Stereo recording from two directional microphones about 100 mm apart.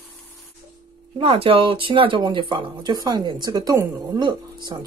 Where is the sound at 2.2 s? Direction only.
50° right (ahead or behind).